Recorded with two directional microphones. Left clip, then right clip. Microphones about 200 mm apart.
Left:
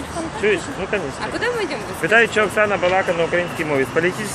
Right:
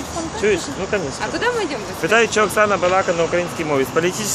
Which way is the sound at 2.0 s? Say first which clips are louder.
Even; 15° right (ahead or behind).